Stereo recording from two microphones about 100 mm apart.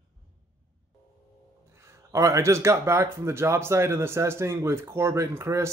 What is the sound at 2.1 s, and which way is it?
Speech, 30° right (ahead or behind).